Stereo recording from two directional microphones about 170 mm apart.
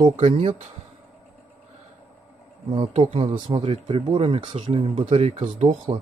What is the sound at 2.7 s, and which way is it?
Speech, 35° right (ahead or behind).